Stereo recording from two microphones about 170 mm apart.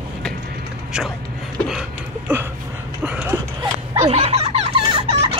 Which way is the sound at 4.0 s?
35° right (ahead or behind).